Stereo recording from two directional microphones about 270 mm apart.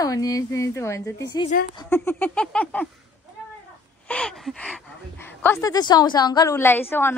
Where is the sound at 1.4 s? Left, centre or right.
Left.